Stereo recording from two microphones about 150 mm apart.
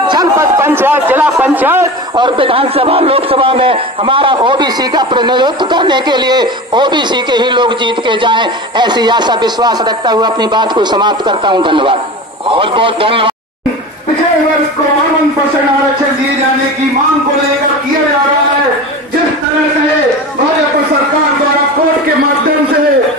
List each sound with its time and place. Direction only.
0.1 s speech: 20° right (ahead or behind)
2.1 s a man's voice: 35° right (ahead or behind)